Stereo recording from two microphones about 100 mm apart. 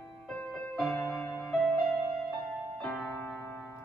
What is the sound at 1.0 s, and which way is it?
Music, 30° left (ahead or behind).